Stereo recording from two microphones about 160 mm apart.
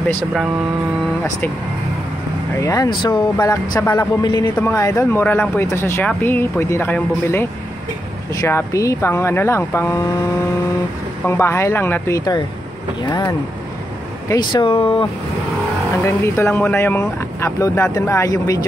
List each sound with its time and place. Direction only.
2.6 s speech: 20° left (ahead or behind)
8.4 s speech: 20° left (ahead or behind)
11.2 s speech: 15° left (ahead or behind)
16.0 s speech: 15° left (ahead or behind)